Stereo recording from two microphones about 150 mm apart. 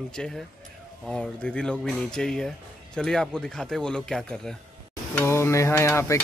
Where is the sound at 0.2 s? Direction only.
5° left (ahead or behind).